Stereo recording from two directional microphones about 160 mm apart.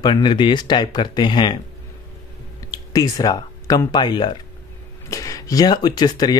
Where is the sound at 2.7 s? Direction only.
25° left (ahead or behind).